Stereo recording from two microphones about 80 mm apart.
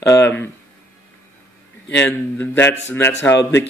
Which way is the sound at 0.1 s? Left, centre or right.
Left.